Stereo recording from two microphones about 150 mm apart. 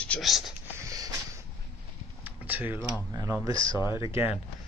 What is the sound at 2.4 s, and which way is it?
Speech, 10° right (ahead or behind).